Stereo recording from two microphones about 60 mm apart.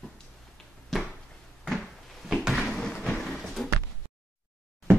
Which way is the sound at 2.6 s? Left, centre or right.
Centre.